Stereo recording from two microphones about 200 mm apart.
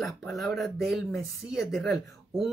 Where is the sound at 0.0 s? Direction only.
Centre (ahead or behind).